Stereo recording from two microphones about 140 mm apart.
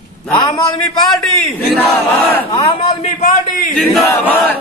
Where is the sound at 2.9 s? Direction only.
50° left (ahead or behind).